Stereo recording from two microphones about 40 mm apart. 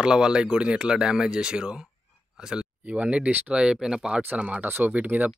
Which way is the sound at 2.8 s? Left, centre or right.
Right.